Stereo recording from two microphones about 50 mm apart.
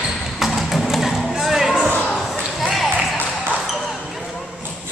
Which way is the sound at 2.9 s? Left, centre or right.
Left.